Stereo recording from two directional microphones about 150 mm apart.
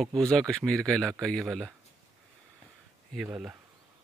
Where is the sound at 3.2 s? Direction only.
10° right (ahead or behind).